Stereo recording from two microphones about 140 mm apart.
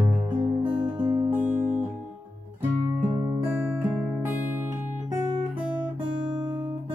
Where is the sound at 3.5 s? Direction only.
10° right (ahead or behind).